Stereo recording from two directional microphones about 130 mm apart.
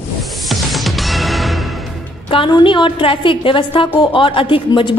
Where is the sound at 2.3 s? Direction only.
35° left (ahead or behind).